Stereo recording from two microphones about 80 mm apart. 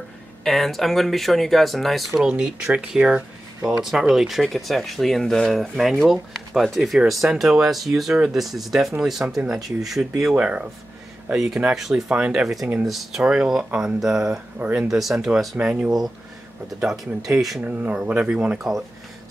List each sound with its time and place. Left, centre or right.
0.4 s speech: centre
2.3 s speech: centre
10.3 s speech: centre
11.3 s speech: centre
14.6 s speech: centre
14.9 s speech: centre
17.2 s speech: centre
17.6 s speech: centre